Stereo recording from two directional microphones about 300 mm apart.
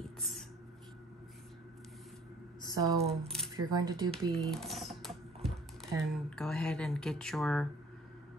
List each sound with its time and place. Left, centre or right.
0.2 s a sound: centre
2.6 s speech: centre
4.1 s typing: centre
6.1 s speech: centre